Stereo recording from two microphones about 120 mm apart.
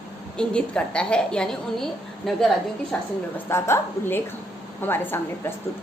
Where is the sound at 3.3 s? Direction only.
20° left (ahead or behind).